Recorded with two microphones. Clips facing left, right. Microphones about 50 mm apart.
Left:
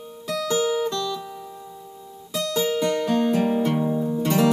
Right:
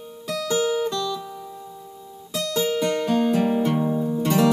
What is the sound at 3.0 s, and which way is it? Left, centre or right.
Music, right.